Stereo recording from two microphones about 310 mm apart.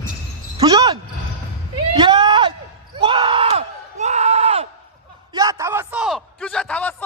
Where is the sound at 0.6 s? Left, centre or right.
Centre.